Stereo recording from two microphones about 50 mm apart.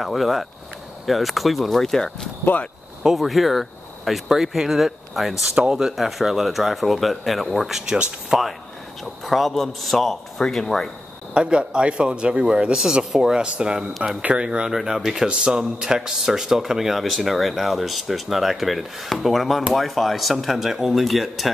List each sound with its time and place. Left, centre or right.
0.0 s speech: centre
7.9 s speech: centre
9.0 s speech: centre
11.3 s speech: centre
13.4 s speech: centre
13.7 s speech: centre
14.3 s speech: centre
14.8 s speech: centre